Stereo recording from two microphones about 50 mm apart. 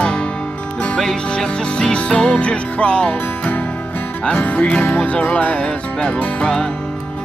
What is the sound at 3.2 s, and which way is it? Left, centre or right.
Music, left.